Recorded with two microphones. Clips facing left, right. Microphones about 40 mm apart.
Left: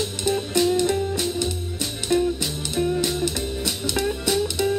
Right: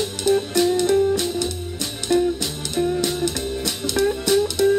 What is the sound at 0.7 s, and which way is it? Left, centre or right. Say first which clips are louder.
Music: right 4 dB; centre.